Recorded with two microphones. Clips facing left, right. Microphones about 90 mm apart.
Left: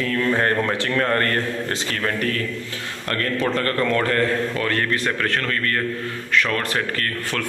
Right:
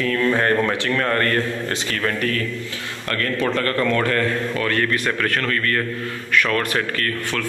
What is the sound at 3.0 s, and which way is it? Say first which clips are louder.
A man's voice: right 1 dB; 30° left (ahead or behind).